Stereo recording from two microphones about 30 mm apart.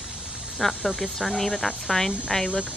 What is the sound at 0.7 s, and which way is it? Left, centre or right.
Speech, right.